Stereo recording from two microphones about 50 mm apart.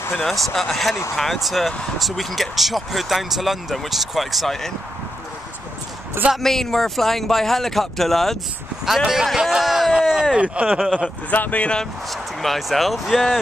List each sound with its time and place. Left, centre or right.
0.1 s speech: centre
6.3 s speech: centre
8.8 s speech: centre
10.3 s speech: right
10.8 s speech: centre
11.2 s speech: left
12.1 s speech: centre